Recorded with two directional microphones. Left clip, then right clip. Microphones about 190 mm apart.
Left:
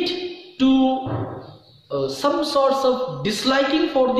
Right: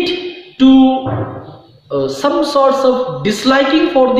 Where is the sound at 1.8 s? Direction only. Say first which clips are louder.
Right 6 dB; 10° right (ahead or behind).